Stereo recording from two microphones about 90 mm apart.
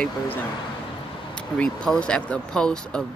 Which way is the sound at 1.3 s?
10° left (ahead or behind).